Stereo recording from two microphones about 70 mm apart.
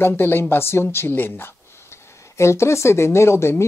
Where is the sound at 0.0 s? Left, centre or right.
Left.